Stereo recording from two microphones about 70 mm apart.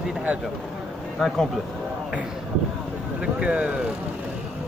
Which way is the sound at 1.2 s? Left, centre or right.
Centre.